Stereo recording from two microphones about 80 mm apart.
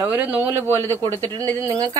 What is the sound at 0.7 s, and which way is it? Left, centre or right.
Speech, left.